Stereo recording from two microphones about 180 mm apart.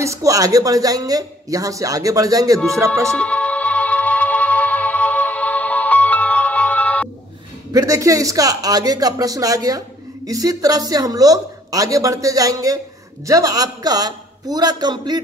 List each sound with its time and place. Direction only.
0.0 s speech: 15° right (ahead or behind)
3.1 s music: 5° left (ahead or behind)
7.7 s speech: 20° right (ahead or behind)